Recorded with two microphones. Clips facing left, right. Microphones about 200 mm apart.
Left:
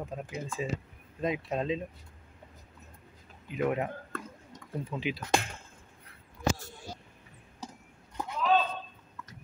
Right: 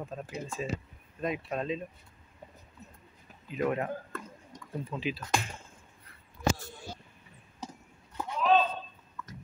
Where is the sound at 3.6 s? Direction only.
15° left (ahead or behind).